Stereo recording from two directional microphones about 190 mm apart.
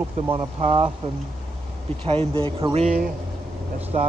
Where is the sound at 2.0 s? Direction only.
30° right (ahead or behind).